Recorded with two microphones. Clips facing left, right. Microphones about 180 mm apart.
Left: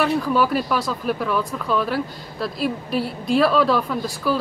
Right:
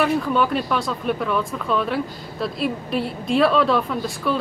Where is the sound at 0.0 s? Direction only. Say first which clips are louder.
Even; centre (ahead or behind).